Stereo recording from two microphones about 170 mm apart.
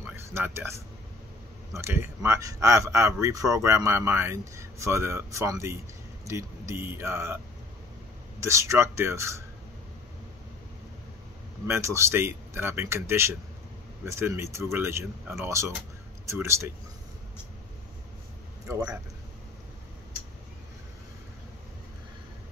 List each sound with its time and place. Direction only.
0.0 s a sound: 15° right (ahead or behind)
1.7 s speech: 15° right (ahead or behind)
8.4 s speech: 15° right (ahead or behind)
11.6 s speech: 15° right (ahead or behind)